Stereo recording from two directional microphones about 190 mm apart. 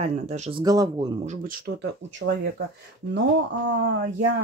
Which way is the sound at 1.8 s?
70° right (ahead or behind).